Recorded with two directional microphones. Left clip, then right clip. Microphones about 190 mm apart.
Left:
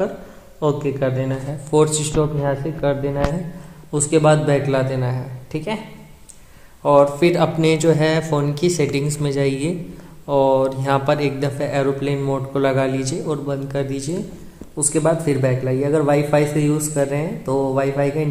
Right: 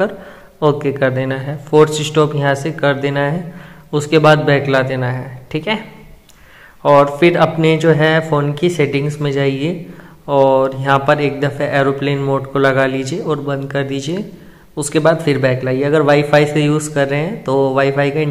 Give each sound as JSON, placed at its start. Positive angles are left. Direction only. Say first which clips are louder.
{"t": 0.6, "sound": "a man's voice", "louder": "right 6 dB", "side_deg": -20}
{"t": 1.7, "sound": "speech", "louder": "right 6 dB", "side_deg": -10}
{"t": 2.4, "sound": "speech", "louder": "right 6 dB", "side_deg": -20}
{"t": 6.8, "sound": "speech", "louder": "right 4 dB", "side_deg": -10}